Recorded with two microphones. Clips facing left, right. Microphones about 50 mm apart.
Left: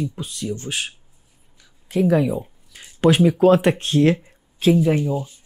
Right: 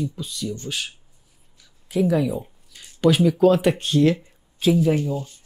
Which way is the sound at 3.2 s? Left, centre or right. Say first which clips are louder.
Left 2 dB; left.